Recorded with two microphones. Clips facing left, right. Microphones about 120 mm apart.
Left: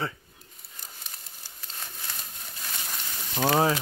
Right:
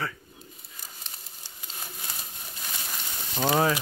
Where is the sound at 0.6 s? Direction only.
Centre (ahead or behind).